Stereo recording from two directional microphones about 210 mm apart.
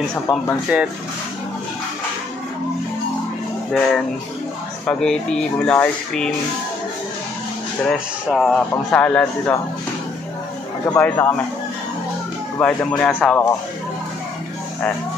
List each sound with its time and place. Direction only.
0.3 s speech: 25° left (ahead or behind)
0.7 s speech: 5° right (ahead or behind)
3.7 s speech: centre (ahead or behind)
7.9 s speech: centre (ahead or behind)
10.9 s speech: 10° left (ahead or behind)
12.5 s speech: 5° left (ahead or behind)